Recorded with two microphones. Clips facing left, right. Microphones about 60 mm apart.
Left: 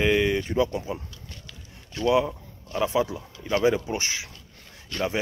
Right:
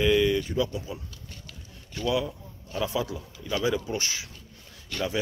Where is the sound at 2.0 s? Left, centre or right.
Left.